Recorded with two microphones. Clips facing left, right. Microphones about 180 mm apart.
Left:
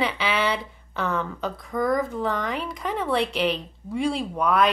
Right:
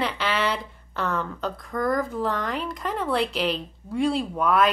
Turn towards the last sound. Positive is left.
turn(degrees=0)  # may be behind; listen again after turning